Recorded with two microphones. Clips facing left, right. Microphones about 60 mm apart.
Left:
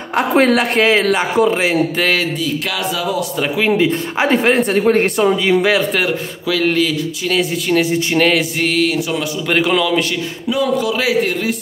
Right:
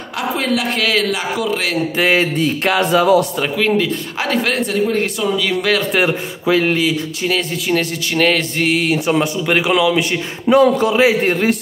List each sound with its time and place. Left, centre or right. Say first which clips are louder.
0.4 s speech: left 6 dB; left
2.4 s a sound: right 4 dB; right
3.5 s speech: left 2 dB; centre
4.8 s speech: left 5 dB; left
5.4 s speech: left 3 dB; centre
6.0 s a man's voice: right 2 dB; right
6.6 s speech: left 1 dB; centre
7.3 s speech: left 4 dB; centre
8.6 s speech: even; centre
8.9 s a man's voice: right 4 dB; right
9.5 s speech: left 1 dB; centre
10.5 s a man's voice: right 5 dB; right
11.0 s a man's voice: right 3 dB; right